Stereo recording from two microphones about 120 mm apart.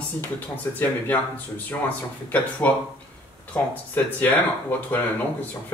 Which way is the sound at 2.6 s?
15° left (ahead or behind).